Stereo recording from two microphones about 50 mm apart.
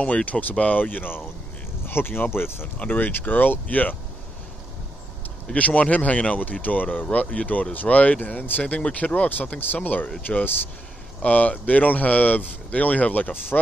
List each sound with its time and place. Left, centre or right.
0.0 s speech: left
2.9 s speech: left
5.5 s speech: left
11.2 s speech: left